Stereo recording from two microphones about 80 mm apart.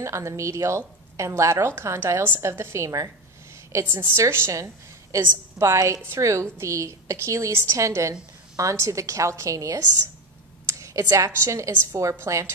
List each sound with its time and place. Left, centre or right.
0.0 s a woman's voice: right